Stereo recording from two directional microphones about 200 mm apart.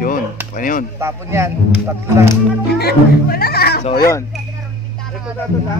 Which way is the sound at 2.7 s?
50° left (ahead or behind).